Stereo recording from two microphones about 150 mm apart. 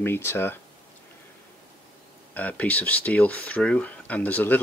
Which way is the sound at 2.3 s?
10° left (ahead or behind).